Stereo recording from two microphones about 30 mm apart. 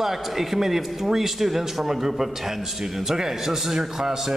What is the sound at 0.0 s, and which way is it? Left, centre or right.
A man's voice, centre.